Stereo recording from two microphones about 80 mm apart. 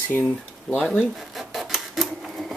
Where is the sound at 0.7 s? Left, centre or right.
Centre.